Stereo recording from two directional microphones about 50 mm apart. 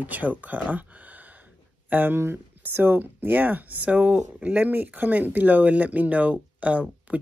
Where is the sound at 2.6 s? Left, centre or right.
Right.